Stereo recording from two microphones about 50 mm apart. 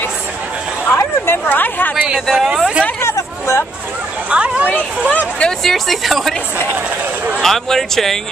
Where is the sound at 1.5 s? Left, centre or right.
Left.